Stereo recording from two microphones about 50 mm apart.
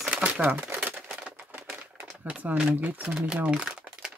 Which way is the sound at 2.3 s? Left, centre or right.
Right.